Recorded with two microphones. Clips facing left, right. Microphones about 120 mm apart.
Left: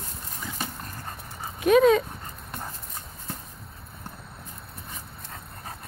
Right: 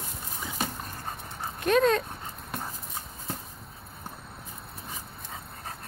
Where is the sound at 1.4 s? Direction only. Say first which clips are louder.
Left 5 dB; 5° left (ahead or behind).